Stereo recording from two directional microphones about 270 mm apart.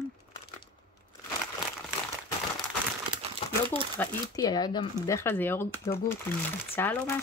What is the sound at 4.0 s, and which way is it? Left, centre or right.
Speech, centre.